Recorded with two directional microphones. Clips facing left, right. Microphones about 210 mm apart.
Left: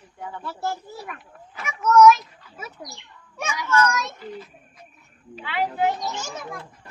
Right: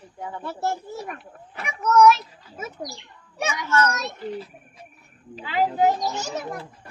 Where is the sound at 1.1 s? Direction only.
35° right (ahead or behind).